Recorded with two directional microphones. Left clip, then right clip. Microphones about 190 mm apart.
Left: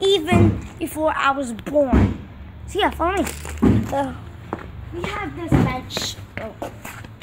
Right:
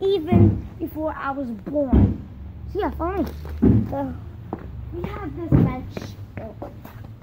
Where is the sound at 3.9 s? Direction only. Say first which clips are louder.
Left 5 dB; 10° left (ahead or behind).